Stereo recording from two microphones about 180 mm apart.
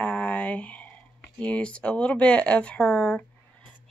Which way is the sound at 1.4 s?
5° left (ahead or behind).